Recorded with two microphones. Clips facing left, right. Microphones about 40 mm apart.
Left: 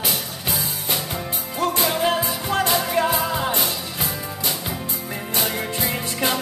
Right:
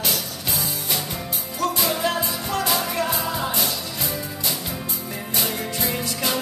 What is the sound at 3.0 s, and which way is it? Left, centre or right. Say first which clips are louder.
Music: left 3 dB; left.